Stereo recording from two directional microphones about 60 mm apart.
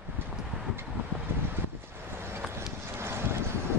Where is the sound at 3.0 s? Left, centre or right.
Right.